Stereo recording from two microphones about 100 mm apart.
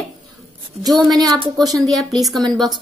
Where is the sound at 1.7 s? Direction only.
5° left (ahead or behind).